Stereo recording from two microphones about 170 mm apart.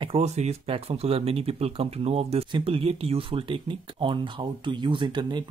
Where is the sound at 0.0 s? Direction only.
35° right (ahead or behind).